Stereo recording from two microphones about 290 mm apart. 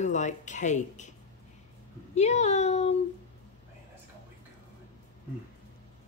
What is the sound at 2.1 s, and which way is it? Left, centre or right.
Speech, left.